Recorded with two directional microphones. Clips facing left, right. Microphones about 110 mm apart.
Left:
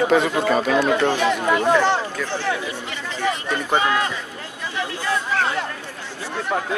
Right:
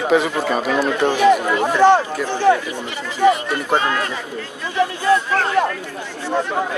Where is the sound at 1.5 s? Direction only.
15° right (ahead or behind).